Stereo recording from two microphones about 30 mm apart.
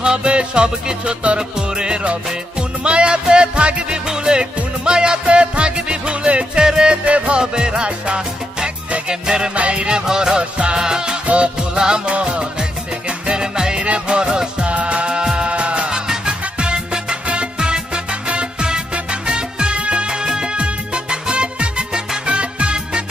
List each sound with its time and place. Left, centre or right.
0.0 s music: right
2.8 s music: right
7.1 s music: right
7.3 s music: right
9.9 s music: right
11.2 s music: right
11.7 s music: right
12.1 s music: right
13.3 s music: right
13.8 s music: right
14.7 s music: right
15.9 s music: right